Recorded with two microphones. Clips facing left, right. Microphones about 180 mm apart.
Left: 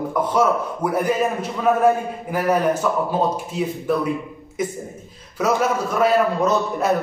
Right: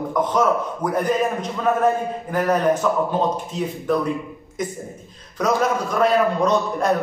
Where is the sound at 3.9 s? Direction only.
10° left (ahead or behind).